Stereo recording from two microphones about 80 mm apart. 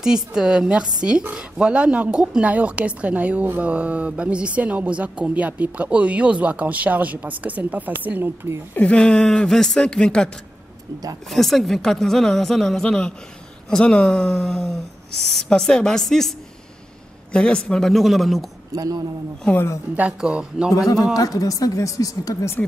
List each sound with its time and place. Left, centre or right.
0.0 s a woman's voice: centre; by 8.3 s right
8.7 s speech: centre
18.7 s speech: right
20.0 s a woman's voice: centre
20.7 s speech: left